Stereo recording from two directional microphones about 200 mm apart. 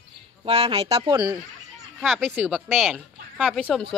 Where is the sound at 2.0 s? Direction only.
Centre (ahead or behind).